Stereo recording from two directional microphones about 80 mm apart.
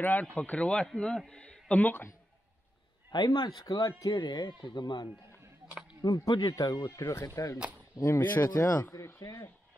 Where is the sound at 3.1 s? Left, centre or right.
Left.